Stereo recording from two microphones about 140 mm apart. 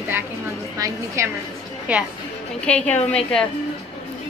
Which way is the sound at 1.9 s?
10° right (ahead or behind).